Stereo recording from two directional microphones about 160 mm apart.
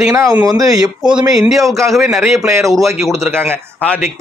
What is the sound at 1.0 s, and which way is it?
Speech, 5° right (ahead or behind).